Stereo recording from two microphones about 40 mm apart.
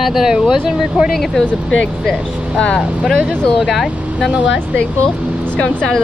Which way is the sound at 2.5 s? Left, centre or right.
Centre.